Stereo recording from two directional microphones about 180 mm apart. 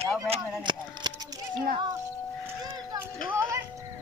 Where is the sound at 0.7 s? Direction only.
25° right (ahead or behind).